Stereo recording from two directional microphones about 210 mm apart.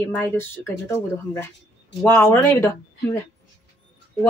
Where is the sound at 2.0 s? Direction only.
10° left (ahead or behind).